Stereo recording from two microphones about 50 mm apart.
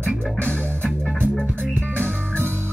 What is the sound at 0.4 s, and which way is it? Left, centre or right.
Music, left.